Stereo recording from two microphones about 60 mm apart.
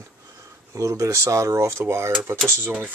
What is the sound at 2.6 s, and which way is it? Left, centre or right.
Speech, right.